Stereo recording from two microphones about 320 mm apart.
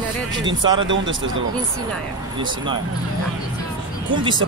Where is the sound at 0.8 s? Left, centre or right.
Right.